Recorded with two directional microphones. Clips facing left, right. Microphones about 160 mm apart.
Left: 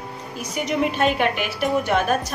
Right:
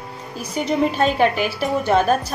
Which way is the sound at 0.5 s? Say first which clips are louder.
Right 3 dB; 35° right (ahead or behind).